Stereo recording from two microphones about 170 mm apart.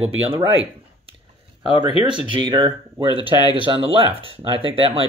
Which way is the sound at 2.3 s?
25° right (ahead or behind).